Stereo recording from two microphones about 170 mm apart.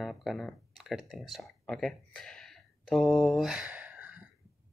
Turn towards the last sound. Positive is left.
turn(degrees=-10)  # may be behind; listen again after turning